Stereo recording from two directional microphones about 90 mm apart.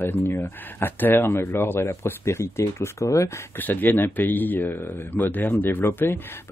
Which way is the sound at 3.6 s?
20° left (ahead or behind).